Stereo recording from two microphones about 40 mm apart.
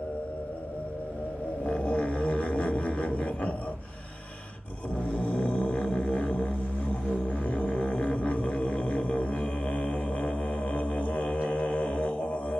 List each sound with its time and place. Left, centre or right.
1.7 s didgeridoo: left
5.1 s music: left
7.1 s a sound: left